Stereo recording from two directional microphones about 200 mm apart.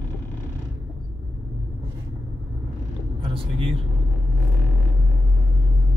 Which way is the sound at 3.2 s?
25° right (ahead or behind).